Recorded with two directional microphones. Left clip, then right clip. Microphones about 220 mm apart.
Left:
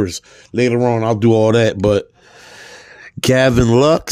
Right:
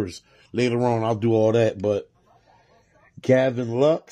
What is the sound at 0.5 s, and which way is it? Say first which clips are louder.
Speech: left 7 dB; 10° left (ahead or behind).